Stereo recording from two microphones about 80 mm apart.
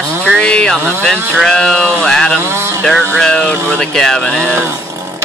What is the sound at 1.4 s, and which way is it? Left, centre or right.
Speech, centre.